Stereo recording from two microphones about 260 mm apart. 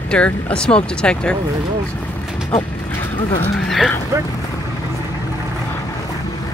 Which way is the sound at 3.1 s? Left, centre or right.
Left.